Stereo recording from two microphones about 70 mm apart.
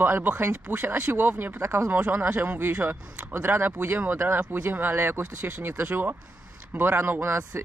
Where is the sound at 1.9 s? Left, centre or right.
Right.